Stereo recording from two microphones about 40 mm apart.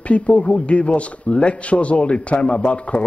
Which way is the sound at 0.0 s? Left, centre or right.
Left.